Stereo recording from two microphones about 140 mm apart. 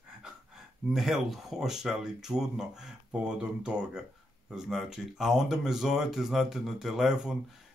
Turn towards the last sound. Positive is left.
turn(degrees=-5)  # may be behind; listen again after turning